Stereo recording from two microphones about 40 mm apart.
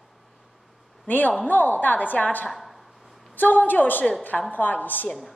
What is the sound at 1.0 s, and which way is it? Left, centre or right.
A man's voice, left.